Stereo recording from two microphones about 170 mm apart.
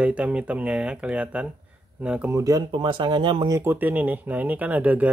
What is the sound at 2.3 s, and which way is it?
Speech, 20° right (ahead or behind).